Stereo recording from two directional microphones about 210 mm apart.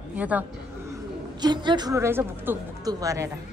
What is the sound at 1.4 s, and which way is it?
A woman's voice, 20° right (ahead or behind).